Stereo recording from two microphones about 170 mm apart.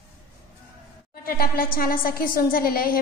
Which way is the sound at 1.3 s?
60° left (ahead or behind).